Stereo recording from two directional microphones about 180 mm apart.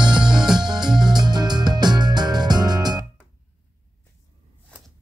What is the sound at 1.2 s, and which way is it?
Music, 25° right (ahead or behind).